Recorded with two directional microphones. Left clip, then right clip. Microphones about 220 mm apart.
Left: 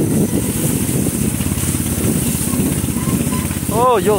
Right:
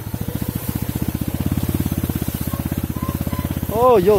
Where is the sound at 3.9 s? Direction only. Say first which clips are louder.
Right 2 dB; 10° right (ahead or behind).